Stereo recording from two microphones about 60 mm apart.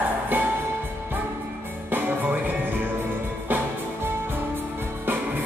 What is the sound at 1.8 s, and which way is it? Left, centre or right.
Music, right.